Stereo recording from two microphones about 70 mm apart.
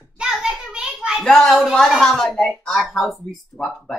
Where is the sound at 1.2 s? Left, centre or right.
Centre.